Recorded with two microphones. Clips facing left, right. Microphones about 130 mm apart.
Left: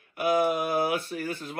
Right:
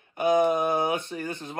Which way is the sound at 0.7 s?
20° right (ahead or behind).